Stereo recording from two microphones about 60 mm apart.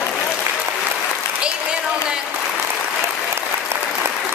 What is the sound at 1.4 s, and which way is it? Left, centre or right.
Applause, centre.